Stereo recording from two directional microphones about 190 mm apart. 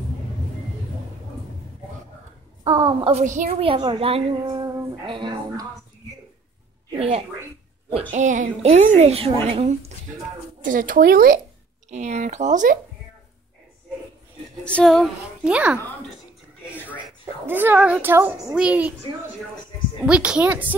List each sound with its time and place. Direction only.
2.6 s a woman's voice: 25° right (ahead or behind)
7.0 s speech: 30° right (ahead or behind)
8.1 s a child's voice: 40° right (ahead or behind)
10.6 s speech: 45° right (ahead or behind)
11.9 s a child's voice: 35° right (ahead or behind)
14.6 s a woman's voice: 5° left (ahead or behind)
16.7 s a sound: 10° left (ahead or behind)
17.5 s a child's voice: 10° right (ahead or behind)
20.1 s a child's voice: 5° right (ahead or behind)